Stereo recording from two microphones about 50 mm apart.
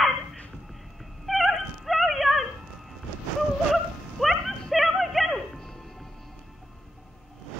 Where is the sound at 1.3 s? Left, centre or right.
Centre.